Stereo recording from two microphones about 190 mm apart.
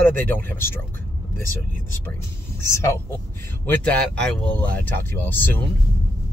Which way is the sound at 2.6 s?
15° left (ahead or behind).